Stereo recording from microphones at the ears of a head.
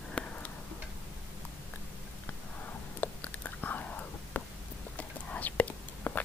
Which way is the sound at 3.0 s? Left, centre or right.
Left.